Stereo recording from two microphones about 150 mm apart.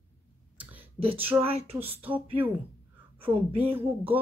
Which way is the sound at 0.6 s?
10° right (ahead or behind).